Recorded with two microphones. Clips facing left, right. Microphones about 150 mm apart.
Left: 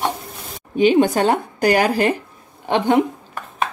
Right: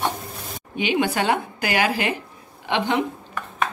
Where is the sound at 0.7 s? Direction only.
35° left (ahead or behind).